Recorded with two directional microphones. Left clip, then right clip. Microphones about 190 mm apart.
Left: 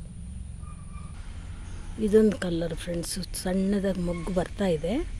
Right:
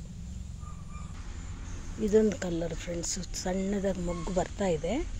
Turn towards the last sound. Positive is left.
turn(degrees=20)  # may be behind; listen again after turning